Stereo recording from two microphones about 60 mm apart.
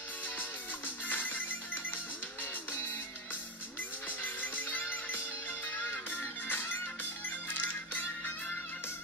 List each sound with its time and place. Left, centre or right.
1.0 s music: left
4.2 s music: left
6.1 s music: left